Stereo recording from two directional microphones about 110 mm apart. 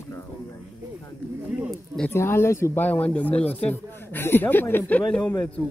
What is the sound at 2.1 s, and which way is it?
Speech, 20° left (ahead or behind).